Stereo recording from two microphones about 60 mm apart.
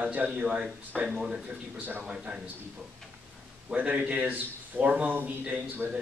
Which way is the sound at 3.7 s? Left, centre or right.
Right.